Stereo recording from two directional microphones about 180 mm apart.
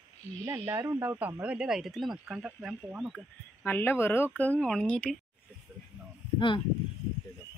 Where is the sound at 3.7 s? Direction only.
10° left (ahead or behind).